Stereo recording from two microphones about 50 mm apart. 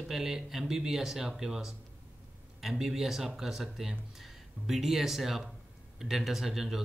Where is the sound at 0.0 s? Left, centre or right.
Centre.